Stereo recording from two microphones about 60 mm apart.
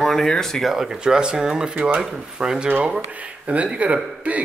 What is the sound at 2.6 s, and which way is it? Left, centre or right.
Speech, right.